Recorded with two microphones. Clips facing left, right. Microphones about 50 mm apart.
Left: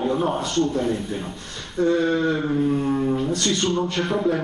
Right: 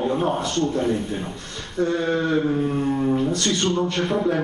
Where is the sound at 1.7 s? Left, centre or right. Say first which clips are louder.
Left 2 dB; centre.